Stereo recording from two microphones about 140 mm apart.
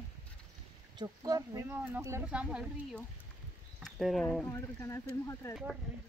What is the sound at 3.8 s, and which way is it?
Speech, centre (ahead or behind).